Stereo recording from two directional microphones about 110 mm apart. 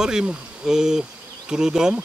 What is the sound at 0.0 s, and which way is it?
Speech, 5° right (ahead or behind).